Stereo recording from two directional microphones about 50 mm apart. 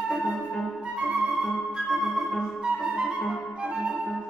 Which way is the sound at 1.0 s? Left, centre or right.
Centre.